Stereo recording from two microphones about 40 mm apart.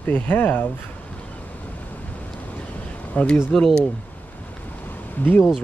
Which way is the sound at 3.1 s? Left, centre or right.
Left.